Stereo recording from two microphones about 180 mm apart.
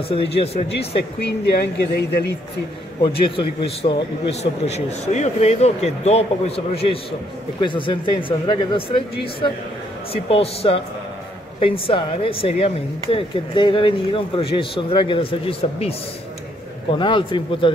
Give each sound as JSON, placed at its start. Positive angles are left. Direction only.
{"t": 0.1, "sound": "a man's voice", "side_deg": 30}
{"t": 1.2, "sound": "speech", "side_deg": 60}
{"t": 3.0, "sound": "a man's voice", "side_deg": 30}
{"t": 16.9, "sound": "speech", "side_deg": 25}